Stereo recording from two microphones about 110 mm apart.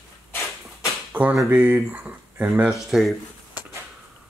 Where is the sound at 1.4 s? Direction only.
20° right (ahead or behind).